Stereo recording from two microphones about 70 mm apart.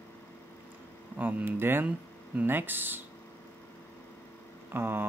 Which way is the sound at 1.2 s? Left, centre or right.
Right.